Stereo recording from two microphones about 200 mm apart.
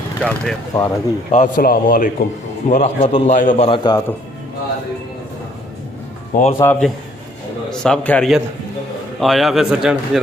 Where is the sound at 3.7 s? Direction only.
20° left (ahead or behind).